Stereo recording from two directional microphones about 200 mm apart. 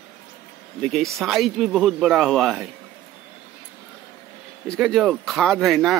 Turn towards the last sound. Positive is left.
turn(degrees=0)  # may be behind; listen again after turning